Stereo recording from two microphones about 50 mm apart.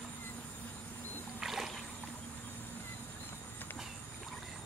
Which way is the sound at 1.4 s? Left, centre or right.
Centre.